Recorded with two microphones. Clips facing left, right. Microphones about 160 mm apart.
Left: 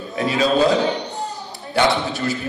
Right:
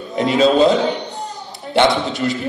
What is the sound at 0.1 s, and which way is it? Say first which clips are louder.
Speech: right 5 dB; 20° right (ahead or behind).